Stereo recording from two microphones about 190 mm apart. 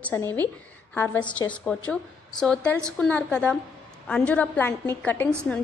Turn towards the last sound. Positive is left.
turn(degrees=10)  # may be behind; listen again after turning